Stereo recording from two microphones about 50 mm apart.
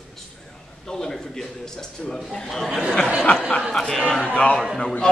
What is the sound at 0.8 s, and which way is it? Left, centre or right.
A man's voice, centre.